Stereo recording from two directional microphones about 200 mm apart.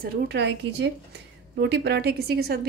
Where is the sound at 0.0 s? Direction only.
55° right (ahead or behind).